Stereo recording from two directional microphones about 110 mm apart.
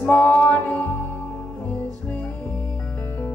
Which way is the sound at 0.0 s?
15° left (ahead or behind).